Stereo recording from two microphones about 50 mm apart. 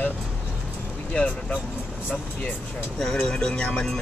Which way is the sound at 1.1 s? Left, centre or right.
Left.